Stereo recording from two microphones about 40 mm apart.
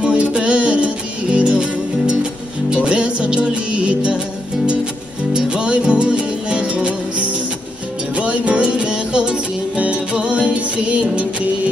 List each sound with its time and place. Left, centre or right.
0.0 s music: right
5.3 s music: right
8.2 s music: right